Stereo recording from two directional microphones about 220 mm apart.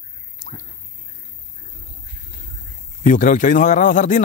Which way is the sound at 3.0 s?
35° left (ahead or behind).